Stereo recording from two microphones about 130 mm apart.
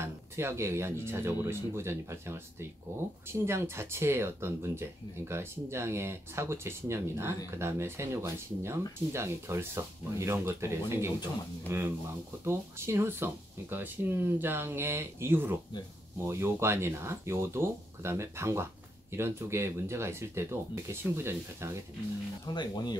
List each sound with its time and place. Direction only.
0.0 s speech: 20° right (ahead or behind)
22.5 s speech: 35° left (ahead or behind)